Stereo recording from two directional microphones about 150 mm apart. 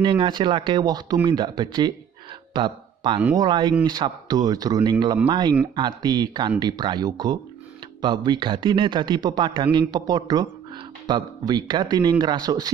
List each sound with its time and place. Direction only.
0.0 s speech: 30° right (ahead or behind)